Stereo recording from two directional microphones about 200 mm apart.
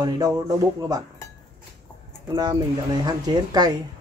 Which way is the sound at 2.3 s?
20° right (ahead or behind).